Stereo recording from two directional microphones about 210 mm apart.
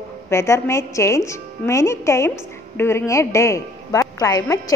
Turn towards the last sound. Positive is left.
turn(degrees=15)  # may be behind; listen again after turning